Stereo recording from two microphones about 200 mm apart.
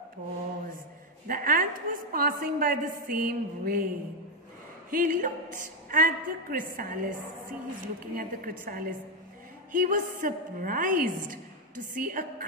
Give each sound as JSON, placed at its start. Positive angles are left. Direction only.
{"t": 1.2, "sound": "a woman's voice", "side_deg": -45}
{"t": 4.9, "sound": "a woman's voice", "side_deg": -40}